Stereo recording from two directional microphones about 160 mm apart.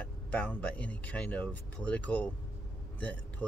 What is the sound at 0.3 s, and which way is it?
Speech, 10° left (ahead or behind).